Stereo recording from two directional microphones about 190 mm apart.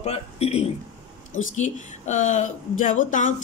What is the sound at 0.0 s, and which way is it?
Speech, 35° left (ahead or behind).